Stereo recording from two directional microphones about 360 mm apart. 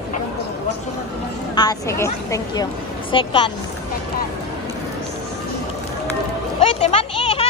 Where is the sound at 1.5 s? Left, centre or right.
Centre.